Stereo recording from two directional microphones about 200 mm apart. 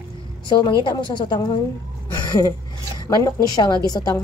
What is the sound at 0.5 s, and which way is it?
A woman's voice, 20° left (ahead or behind).